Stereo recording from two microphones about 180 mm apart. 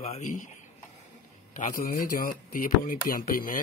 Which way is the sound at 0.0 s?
40° left (ahead or behind).